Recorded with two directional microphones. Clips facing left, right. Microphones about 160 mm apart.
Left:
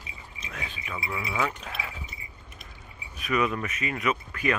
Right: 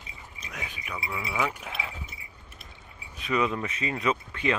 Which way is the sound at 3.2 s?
25° right (ahead or behind).